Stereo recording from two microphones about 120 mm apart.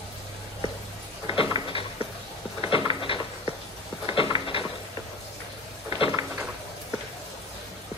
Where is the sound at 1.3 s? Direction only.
45° left (ahead or behind).